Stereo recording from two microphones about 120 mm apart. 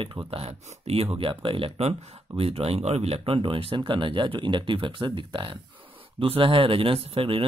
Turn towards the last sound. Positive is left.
turn(degrees=-50)  # may be behind; listen again after turning